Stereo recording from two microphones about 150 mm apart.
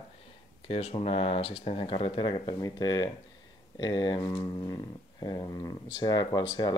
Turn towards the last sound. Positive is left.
turn(degrees=30)  # may be behind; listen again after turning